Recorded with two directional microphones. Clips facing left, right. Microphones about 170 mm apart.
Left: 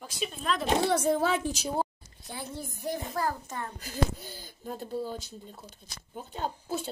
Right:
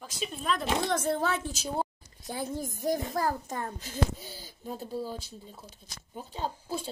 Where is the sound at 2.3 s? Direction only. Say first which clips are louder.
Right 5 dB; 40° right (ahead or behind).